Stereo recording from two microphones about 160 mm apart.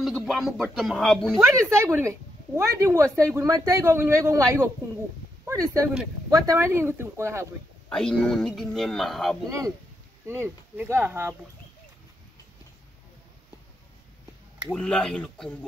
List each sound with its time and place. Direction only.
0.0 s speech: centre (ahead or behind)
1.4 s speech: 15° right (ahead or behind)
7.9 s speech: 5° left (ahead or behind)
10.2 s speech: 15° right (ahead or behind)
14.7 s speech: 5° left (ahead or behind)